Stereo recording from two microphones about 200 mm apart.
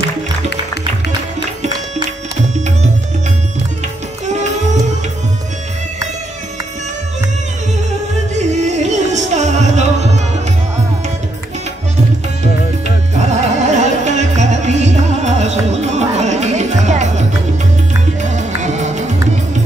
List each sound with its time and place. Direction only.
4.3 s music: 35° right (ahead or behind)
8.5 s music: 35° right (ahead or behind)
13.3 s music: 35° right (ahead or behind)